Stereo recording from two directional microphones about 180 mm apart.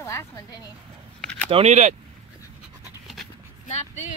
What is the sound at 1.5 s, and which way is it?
Speech, 40° right (ahead or behind).